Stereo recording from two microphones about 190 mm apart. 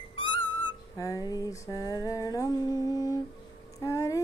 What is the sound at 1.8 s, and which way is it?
Humming, 20° left (ahead or behind).